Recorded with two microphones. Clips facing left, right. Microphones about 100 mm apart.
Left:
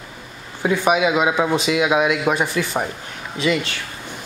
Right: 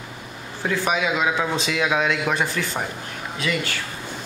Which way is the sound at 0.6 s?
15° left (ahead or behind).